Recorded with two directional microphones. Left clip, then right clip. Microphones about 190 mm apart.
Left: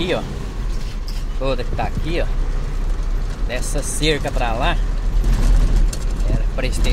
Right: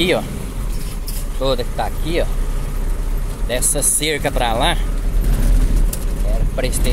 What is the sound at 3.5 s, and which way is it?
Speech, 25° right (ahead or behind).